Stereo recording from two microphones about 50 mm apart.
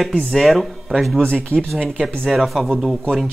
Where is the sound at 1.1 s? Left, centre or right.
Centre.